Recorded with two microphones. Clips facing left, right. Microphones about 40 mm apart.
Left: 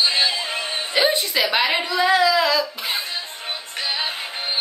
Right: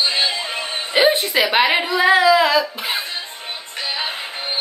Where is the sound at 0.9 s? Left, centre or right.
Right.